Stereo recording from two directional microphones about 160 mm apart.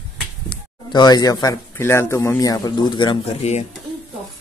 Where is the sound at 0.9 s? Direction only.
25° left (ahead or behind); by 3.6 s 40° left (ahead or behind).